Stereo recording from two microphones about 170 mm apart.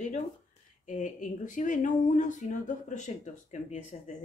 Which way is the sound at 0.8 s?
50° left (ahead or behind).